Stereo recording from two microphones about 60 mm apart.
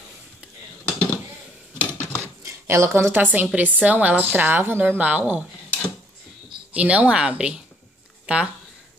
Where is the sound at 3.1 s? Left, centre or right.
Right.